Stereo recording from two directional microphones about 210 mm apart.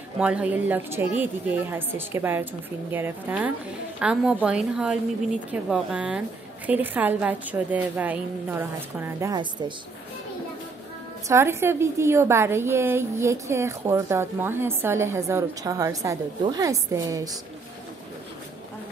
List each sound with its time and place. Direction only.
0.2 s a woman's voice: 5° right (ahead or behind); by 9.8 s 20° right (ahead or behind)
11.2 s a woman's voice: 10° right (ahead or behind)